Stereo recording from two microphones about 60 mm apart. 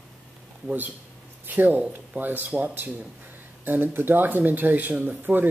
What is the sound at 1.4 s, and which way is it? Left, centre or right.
Speech, right.